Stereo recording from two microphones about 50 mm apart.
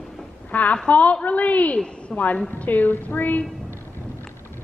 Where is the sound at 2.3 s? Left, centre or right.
Left.